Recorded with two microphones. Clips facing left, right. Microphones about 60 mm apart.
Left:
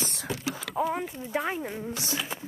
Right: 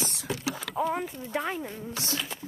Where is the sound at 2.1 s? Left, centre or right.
Centre.